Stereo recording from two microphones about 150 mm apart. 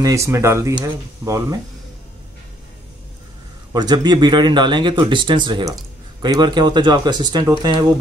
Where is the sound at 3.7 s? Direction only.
25° right (ahead or behind).